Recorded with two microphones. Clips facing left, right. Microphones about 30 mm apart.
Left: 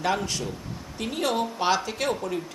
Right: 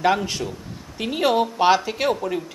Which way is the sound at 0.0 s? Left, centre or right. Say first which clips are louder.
Right 6 dB; centre.